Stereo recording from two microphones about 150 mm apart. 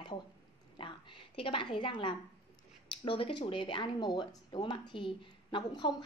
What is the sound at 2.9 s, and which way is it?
A woman's voice, 35° left (ahead or behind).